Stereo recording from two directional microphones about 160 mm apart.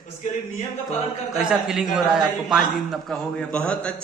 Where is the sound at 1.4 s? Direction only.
5° right (ahead or behind).